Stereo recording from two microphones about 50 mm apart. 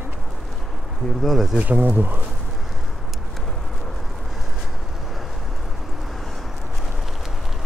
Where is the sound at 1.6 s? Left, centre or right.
Right.